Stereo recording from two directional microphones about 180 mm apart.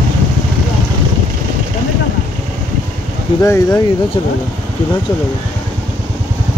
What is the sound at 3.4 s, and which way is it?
Speech, 15° left (ahead or behind).